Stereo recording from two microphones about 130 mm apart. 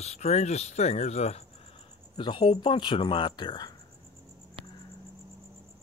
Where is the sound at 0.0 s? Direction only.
55° left (ahead or behind); by 3.7 s 35° left (ahead or behind).